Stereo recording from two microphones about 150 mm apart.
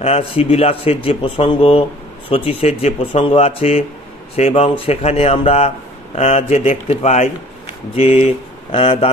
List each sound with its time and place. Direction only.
0.0 s speech: 45° left (ahead or behind)